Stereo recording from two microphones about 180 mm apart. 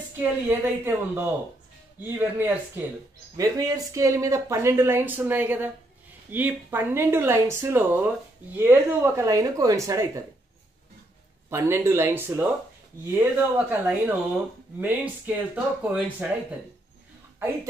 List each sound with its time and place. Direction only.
0.2 s speech: 10° right (ahead or behind)
11.5 s speech: 15° right (ahead or behind)